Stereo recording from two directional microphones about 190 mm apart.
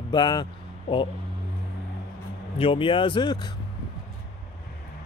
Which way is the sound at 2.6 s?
25° left (ahead or behind).